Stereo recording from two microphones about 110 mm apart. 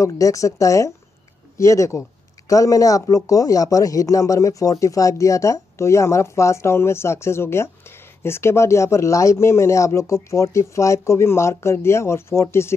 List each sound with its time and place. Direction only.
0.0 s speech: 30° left (ahead or behind)